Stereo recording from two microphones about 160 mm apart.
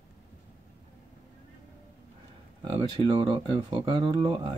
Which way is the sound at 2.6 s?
25° right (ahead or behind).